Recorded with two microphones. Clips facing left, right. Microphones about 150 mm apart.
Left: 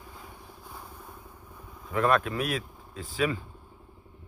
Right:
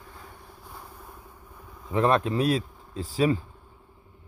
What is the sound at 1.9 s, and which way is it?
Speech, 25° right (ahead or behind).